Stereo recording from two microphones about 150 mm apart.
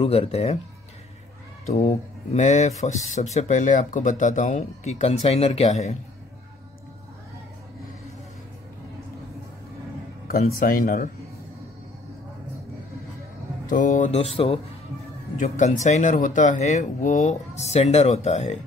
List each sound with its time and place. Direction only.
0.0 s speech: 40° left (ahead or behind)
1.7 s speech: 50° left (ahead or behind)
10.2 s speech: 75° left (ahead or behind)
13.7 s speech: 60° left (ahead or behind); by 14.6 s 40° left (ahead or behind)
15.3 s speech: 55° left (ahead or behind)